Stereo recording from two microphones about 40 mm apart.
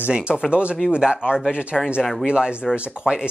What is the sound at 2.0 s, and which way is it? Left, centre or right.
Speech, centre.